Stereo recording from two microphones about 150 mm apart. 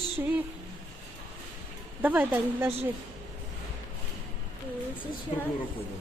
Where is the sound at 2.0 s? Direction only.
10° right (ahead or behind).